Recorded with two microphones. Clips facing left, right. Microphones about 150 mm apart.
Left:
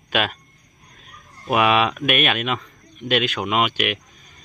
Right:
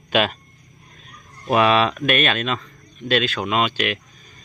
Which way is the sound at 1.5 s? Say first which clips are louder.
Right 1 dB; 10° left (ahead or behind).